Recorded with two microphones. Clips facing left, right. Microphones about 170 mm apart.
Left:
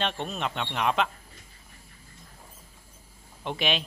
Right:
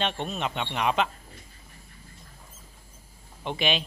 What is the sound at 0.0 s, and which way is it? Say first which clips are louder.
Speech: right 1 dB; centre (ahead or behind).